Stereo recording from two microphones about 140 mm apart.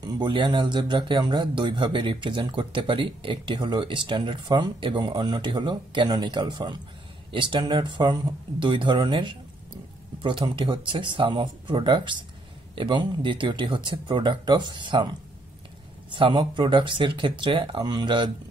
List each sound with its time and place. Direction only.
0.0 s speech: 35° right (ahead or behind)
16.1 s speech: 35° right (ahead or behind)